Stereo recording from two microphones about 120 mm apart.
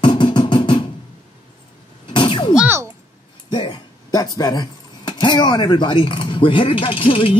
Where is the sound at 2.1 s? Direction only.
40° left (ahead or behind).